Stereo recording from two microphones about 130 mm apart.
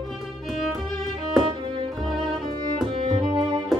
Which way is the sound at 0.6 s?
Centre (ahead or behind).